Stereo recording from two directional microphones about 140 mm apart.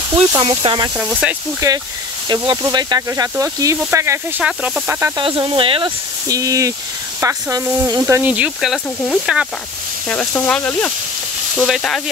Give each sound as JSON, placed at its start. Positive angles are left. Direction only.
{"t": 0.1, "sound": "speech", "side_deg": -30}
{"t": 0.9, "sound": "speech", "side_deg": -10}
{"t": 1.6, "sound": "speech", "side_deg": -25}
{"t": 4.4, "sound": "speech", "side_deg": -5}
{"t": 5.2, "sound": "speech", "side_deg": -35}
{"t": 6.2, "sound": "speech", "side_deg": -25}
{"t": 10.0, "sound": "speech", "side_deg": 15}
{"t": 11.5, "sound": "frying", "side_deg": -5}